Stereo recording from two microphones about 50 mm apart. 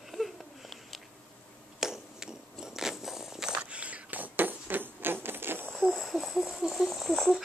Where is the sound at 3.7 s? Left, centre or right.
Right.